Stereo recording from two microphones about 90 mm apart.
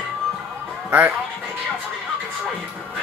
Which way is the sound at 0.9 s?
20° right (ahead or behind).